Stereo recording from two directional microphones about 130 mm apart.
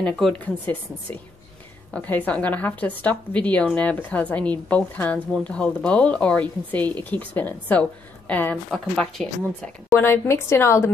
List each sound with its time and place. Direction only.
0.0 s speech: 10° left (ahead or behind)
9.8 s a woman's voice: 20° left (ahead or behind)